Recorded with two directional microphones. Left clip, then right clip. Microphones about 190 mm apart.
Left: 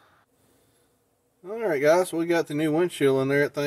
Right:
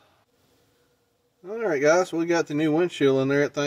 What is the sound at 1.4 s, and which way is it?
Speech, 10° right (ahead or behind).